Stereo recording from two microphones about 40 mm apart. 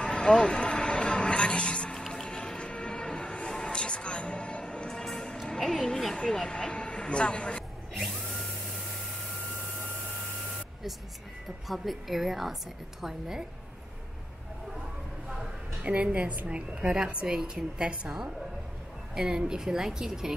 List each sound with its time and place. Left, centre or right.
0.0 s music: left
2.0 s music: centre
5.5 s a sound: centre
6.3 s a sound: centre
11.6 s a woman's voice: centre
15.8 s a woman's voice: right
16.4 s a woman's voice: right